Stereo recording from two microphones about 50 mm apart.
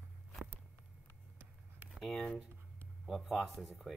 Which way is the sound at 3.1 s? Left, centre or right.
Centre.